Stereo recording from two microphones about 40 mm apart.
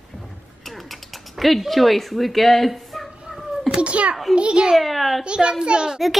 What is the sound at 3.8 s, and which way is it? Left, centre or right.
Speech, right.